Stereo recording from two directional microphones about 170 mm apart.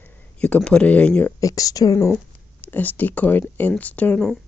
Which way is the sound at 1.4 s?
20° left (ahead or behind).